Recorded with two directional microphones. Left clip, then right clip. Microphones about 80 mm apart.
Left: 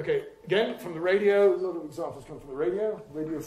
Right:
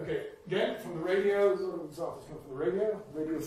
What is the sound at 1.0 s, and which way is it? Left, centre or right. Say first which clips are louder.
Speech: left 5 dB; left.